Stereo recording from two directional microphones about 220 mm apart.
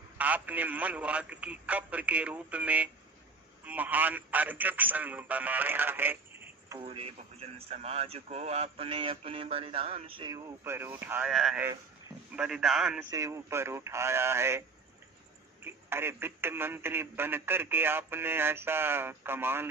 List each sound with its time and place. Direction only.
0.2 s speech: 5° right (ahead or behind)
6.8 s a man's voice: 25° right (ahead or behind); by 13.0 s centre (ahead or behind)
13.1 s speech: 15° right (ahead or behind)
15.6 s speech: 10° right (ahead or behind)